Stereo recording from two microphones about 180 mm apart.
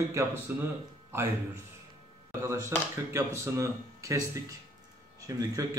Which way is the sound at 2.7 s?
15° right (ahead or behind).